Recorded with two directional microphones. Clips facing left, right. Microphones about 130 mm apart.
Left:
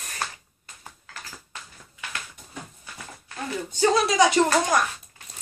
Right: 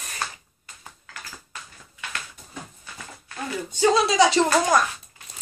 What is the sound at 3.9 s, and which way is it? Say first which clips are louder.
Speech: right 1 dB; 25° right (ahead or behind).